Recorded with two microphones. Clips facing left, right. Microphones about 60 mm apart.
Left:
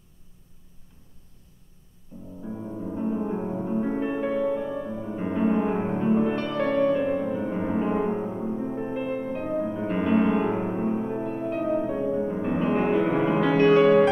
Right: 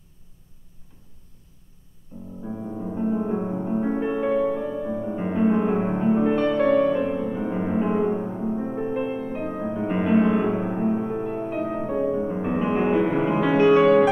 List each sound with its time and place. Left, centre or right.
2.1 s music: centre
4.8 s music: centre
8.0 s music: centre
8.5 s music: centre